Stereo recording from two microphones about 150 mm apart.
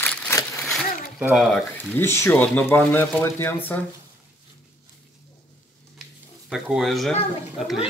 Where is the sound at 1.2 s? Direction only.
10° right (ahead or behind).